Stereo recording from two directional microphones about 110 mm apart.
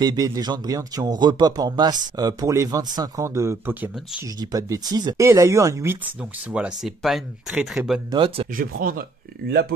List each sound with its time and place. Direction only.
0.0 s speech: 35° right (ahead or behind)
3.3 s speech: 25° right (ahead or behind)
6.5 s speech: 10° right (ahead or behind)
8.1 s speech: 50° right (ahead or behind)